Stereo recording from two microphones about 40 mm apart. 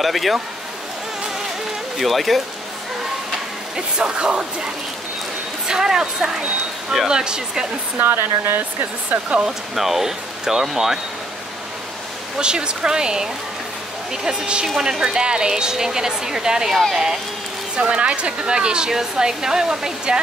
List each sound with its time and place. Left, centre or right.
0.0 s speech: centre
2.0 s speech: centre
3.7 s speech: right
5.7 s speech: centre
8.0 s speech: right
9.1 s speech: right
9.5 s speech: centre
12.4 s speech: right
17.7 s speech: right